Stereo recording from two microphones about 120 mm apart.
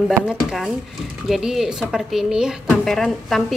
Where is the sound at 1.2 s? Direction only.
Centre (ahead or behind).